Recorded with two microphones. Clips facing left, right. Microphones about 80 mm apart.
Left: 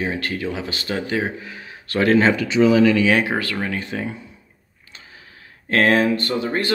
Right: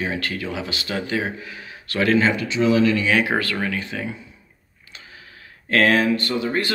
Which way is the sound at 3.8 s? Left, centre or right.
Left.